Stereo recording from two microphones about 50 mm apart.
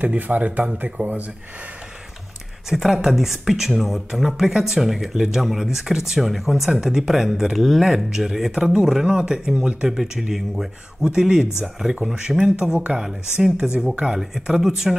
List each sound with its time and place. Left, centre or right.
0.0 s speech: right
2.7 s speech: centre; by 14.2 s right
14.3 s speech: centre